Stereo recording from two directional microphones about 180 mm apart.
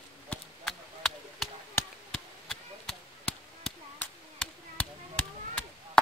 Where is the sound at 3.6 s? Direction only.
5° left (ahead or behind).